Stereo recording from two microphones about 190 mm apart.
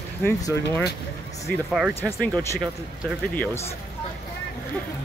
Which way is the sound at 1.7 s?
5° right (ahead or behind).